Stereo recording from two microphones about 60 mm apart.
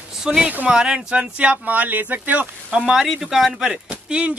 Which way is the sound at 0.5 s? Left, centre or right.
Right.